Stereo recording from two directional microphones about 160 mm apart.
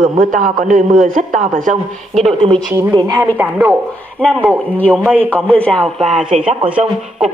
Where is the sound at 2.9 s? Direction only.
25° right (ahead or behind).